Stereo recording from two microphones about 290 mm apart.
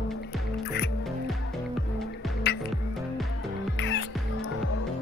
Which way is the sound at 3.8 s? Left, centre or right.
Left.